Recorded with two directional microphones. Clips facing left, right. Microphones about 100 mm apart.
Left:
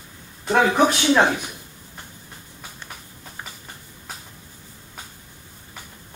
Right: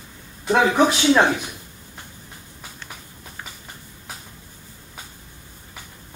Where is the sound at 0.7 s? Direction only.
15° left (ahead or behind).